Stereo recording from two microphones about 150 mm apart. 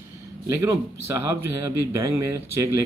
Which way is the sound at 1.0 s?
20° right (ahead or behind).